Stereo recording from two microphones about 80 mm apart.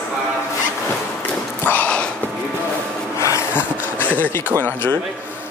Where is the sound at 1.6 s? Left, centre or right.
Left.